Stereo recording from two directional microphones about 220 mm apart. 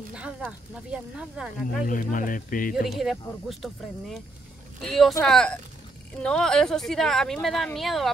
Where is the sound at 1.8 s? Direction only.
35° left (ahead or behind).